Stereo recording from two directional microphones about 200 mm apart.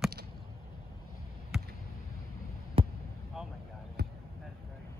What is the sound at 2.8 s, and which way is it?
Basketball bounce, 25° right (ahead or behind).